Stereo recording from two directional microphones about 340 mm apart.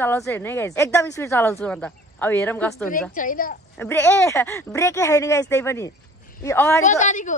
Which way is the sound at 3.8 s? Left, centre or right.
Centre.